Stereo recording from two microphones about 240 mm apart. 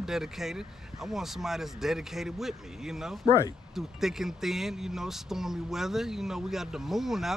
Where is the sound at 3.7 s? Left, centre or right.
Centre.